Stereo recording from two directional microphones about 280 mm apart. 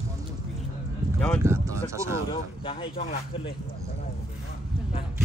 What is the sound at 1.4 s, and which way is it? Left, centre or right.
Speech, centre.